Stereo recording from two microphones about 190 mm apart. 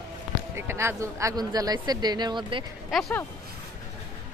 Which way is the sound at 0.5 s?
15° right (ahead or behind).